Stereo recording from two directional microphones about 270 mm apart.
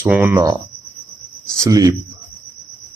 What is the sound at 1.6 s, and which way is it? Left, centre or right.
Speech, centre.